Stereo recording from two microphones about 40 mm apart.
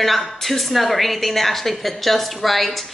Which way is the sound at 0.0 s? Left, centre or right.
Centre.